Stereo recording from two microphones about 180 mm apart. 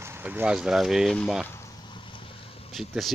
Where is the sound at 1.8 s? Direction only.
25° left (ahead or behind).